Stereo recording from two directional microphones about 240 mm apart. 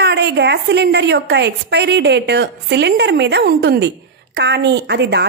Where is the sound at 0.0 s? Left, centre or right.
Right.